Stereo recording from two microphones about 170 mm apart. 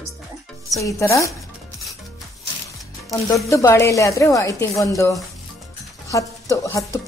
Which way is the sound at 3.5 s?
15° left (ahead or behind).